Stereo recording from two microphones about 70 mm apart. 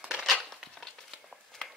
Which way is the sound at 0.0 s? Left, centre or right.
Centre.